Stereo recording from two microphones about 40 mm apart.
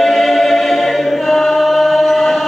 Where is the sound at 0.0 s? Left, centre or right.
Centre.